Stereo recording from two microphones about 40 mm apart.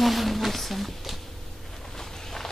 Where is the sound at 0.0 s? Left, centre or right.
Centre.